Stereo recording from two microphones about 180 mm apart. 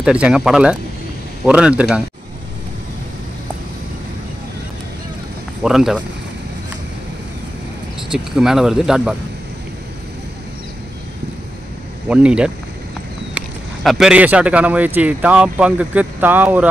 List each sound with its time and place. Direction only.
0.0 s speech: 5° right (ahead or behind)
5.6 s speech: 5° right (ahead or behind)
8.1 s speech: 5° right (ahead or behind)
12.1 s speech: 5° right (ahead or behind)
13.8 s speech: 5° right (ahead or behind)